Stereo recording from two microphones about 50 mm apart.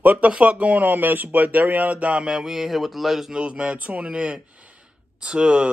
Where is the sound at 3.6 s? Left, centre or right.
Right.